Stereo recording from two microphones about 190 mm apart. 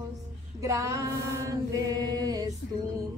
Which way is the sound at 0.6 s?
15° right (ahead or behind).